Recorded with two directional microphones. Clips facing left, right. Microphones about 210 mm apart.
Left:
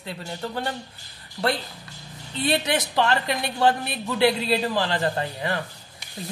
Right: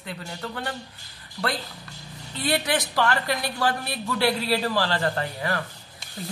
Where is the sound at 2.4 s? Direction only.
25° left (ahead or behind).